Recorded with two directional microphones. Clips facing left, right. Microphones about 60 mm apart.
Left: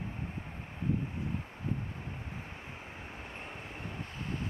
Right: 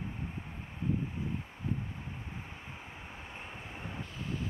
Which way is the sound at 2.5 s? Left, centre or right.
Centre.